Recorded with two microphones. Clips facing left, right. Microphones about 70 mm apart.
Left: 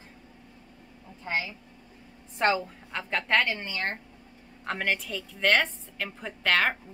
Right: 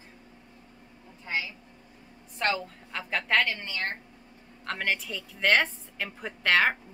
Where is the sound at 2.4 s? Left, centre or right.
Left.